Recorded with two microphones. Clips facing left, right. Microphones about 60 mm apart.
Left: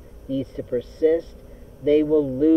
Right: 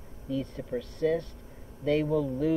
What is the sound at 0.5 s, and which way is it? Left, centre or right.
Speech, centre.